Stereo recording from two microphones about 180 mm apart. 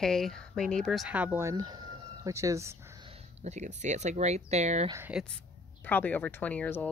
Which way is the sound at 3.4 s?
40° right (ahead or behind).